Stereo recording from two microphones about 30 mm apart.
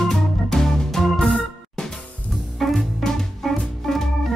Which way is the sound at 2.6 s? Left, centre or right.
Centre.